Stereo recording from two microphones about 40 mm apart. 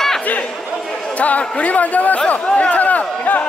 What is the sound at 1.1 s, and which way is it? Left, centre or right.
A man's voice, left.